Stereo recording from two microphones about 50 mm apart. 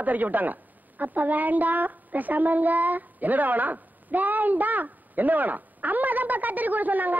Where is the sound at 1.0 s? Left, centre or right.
Right.